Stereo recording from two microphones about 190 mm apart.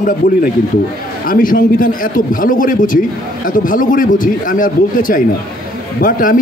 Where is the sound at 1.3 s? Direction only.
45° left (ahead or behind).